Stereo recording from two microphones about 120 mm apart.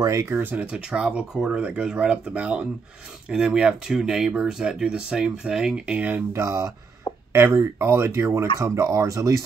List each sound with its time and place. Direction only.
0.0 s speech: 25° right (ahead or behind)
0.3 s speech: 15° right (ahead or behind)
6.3 s speech: 25° right (ahead or behind)